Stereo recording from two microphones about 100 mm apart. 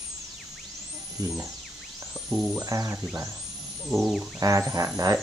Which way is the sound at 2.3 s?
10° right (ahead or behind).